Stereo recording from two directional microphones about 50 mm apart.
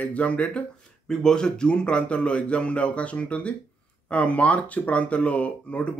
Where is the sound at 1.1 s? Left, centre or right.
Centre.